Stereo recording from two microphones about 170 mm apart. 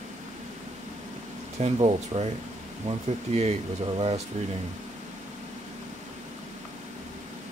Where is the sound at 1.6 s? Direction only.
40° right (ahead or behind).